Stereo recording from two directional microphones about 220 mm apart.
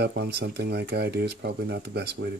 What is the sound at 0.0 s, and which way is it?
Speech, 50° right (ahead or behind).